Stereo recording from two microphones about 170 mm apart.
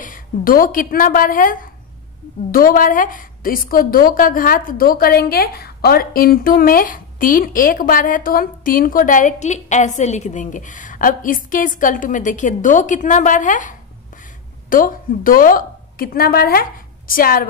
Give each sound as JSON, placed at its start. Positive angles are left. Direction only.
{"t": 0.0, "sound": "a woman's voice", "side_deg": 55}